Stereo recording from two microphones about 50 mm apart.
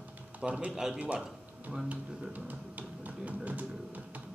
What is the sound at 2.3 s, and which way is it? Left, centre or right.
Speech, right.